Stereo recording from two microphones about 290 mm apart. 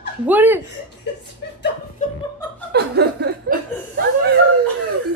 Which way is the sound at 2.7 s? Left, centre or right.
Right.